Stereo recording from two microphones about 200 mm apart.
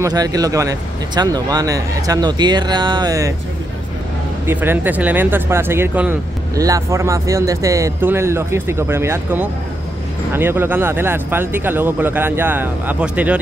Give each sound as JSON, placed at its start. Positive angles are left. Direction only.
{"t": 0.0, "sound": "speech", "side_deg": -20}
{"t": 4.5, "sound": "speech", "side_deg": -10}